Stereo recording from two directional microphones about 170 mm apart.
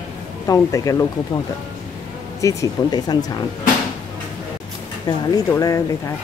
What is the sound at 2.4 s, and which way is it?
Speech, 20° left (ahead or behind).